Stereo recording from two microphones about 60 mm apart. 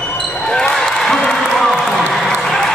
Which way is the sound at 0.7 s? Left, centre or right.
Centre.